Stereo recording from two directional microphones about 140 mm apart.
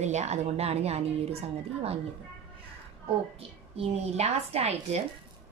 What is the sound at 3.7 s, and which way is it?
Speech, 45° right (ahead or behind).